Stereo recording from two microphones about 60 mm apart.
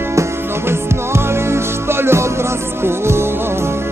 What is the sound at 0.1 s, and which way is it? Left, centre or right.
Music, right.